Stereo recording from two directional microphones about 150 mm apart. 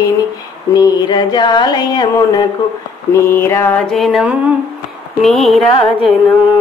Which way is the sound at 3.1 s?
15° left (ahead or behind).